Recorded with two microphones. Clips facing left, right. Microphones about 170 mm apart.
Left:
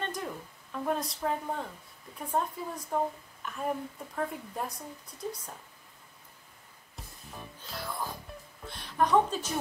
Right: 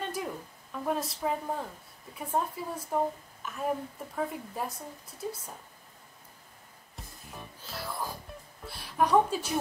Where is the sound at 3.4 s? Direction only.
Centre (ahead or behind).